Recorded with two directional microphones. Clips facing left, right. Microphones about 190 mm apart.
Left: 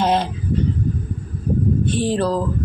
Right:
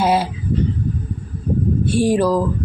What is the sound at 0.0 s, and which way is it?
Speech, 10° right (ahead or behind).